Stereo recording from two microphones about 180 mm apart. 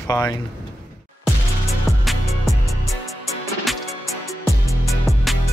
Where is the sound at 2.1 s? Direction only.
Centre (ahead or behind).